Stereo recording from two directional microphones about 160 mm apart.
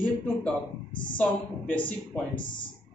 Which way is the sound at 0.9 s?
30° left (ahead or behind).